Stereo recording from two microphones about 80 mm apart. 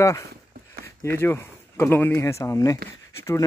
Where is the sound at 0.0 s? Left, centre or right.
Left.